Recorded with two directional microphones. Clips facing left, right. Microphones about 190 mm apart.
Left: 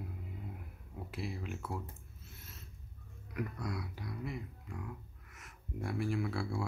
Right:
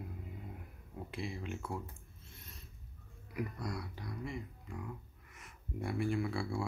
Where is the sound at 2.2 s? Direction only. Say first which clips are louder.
Left 1 dB; 5° left (ahead or behind).